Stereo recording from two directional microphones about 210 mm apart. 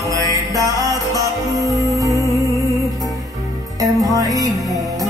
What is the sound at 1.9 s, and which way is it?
Music, 15° right (ahead or behind).